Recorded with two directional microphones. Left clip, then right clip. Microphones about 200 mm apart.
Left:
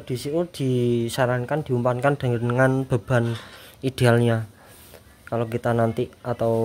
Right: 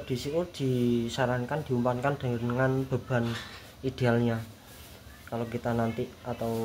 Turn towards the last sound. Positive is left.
turn(degrees=60)  # may be behind; listen again after turning